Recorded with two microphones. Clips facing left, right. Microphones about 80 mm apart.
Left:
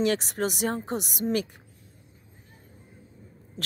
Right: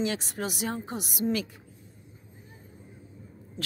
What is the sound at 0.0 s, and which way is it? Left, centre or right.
A woman's voice, left.